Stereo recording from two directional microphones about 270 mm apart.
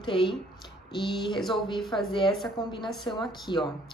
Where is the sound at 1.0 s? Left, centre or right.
Centre.